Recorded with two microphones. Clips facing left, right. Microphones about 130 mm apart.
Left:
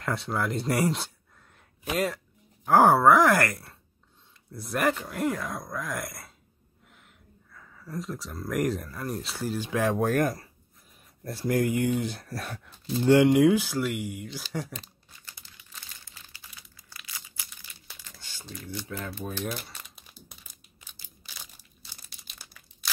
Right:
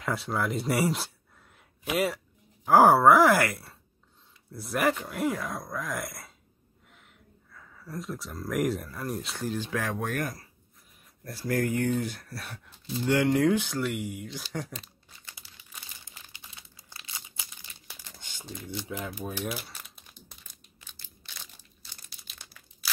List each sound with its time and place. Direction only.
0.0 s speech: centre (ahead or behind)
7.5 s speech: centre (ahead or behind)
9.7 s speech: 25° left (ahead or behind)
11.2 s speech: 20° left (ahead or behind)
12.3 s speech: 45° left (ahead or behind)
13.0 s speech: 25° left (ahead or behind)
13.3 s speech: 10° left (ahead or behind)
15.3 s crumpling: 10° right (ahead or behind)
18.0 s typewriter: 20° right (ahead or behind); by 20.2 s centre (ahead or behind)
22.0 s crumpling: centre (ahead or behind)